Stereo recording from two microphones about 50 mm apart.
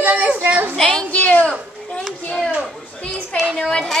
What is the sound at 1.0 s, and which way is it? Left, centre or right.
Speech, left.